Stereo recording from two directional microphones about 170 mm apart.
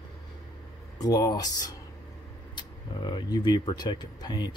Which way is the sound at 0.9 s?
20° left (ahead or behind).